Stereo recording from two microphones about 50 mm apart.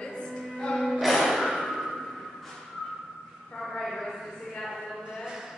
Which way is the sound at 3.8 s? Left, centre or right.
Centre.